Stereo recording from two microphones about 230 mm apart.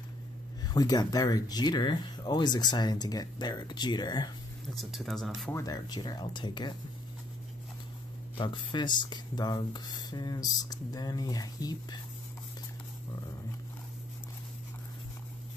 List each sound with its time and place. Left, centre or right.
0.7 s speech: centre
4.9 s speech: centre
5.6 s speech: centre
8.4 s speech: centre